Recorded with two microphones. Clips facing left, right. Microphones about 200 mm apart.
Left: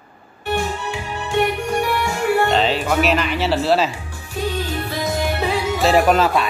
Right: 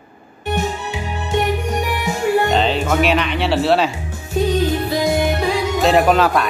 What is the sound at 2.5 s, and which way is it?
Music, centre (ahead or behind).